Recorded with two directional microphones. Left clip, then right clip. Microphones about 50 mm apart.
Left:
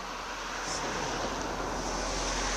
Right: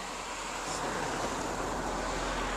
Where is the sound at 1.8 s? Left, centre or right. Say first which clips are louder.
Left 1 dB; left.